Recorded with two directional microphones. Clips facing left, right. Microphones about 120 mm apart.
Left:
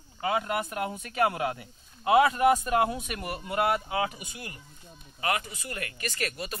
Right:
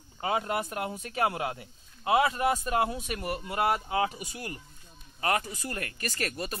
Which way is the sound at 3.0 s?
30° right (ahead or behind).